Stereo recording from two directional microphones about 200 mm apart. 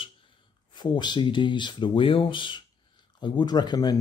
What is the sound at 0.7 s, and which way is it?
Speech, 20° left (ahead or behind).